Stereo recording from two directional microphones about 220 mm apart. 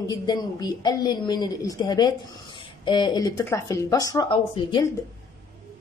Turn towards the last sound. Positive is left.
turn(degrees=20)  # may be behind; listen again after turning